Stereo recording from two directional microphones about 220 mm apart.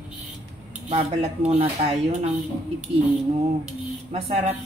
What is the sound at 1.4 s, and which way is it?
Speech, 30° right (ahead or behind).